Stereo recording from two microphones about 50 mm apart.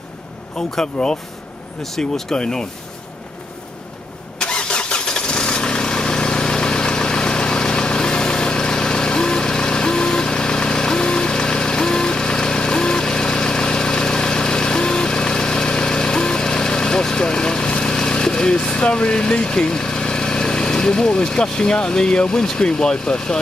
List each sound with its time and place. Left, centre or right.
0.6 s speech: centre
4.4 s vehicle: centre